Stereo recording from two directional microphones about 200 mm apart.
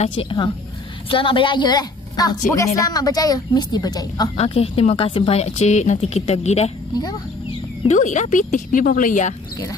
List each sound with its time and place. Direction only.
0.2 s a woman's voice: 25° left (ahead or behind)
4.4 s speech: 30° left (ahead or behind)
7.8 s speech: 35° left (ahead or behind)